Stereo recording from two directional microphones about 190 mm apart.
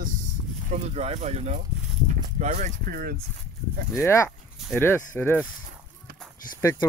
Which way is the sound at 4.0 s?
15° left (ahead or behind).